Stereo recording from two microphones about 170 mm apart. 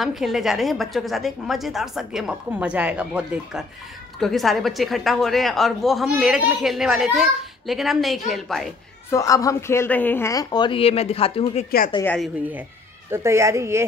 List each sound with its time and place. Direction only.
0.0 s a woman's voice: centre (ahead or behind)
9.1 s a woman's voice: 20° left (ahead or behind)
12.0 s a woman's voice: 10° left (ahead or behind)
13.1 s speech: 15° right (ahead or behind)